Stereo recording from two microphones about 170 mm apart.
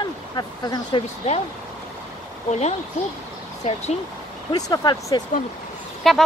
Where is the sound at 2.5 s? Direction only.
40° left (ahead or behind).